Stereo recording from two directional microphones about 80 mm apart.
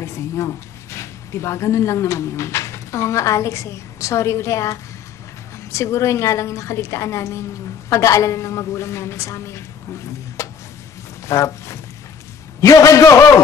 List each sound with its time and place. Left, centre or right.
0.0 s a woman's voice: left